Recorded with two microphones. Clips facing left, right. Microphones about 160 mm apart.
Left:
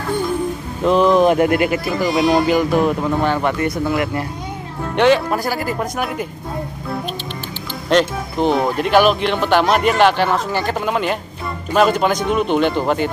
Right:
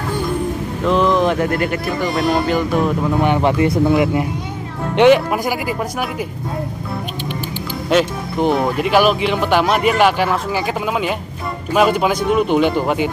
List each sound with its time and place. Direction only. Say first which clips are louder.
0.8 s speech: left 3 dB; 15° left (ahead or behind)
3.2 s a man's voice: right 3 dB; 15° right (ahead or behind)
7.9 s a man's voice: even; 5° right (ahead or behind)